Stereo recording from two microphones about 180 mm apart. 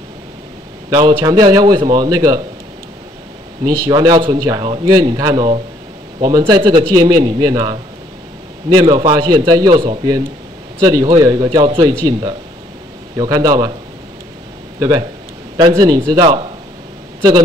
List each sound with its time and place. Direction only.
0.8 s a man's voice: 20° right (ahead or behind)
3.8 s a man's voice: 20° right (ahead or behind)
14.8 s a man's voice: 25° right (ahead or behind)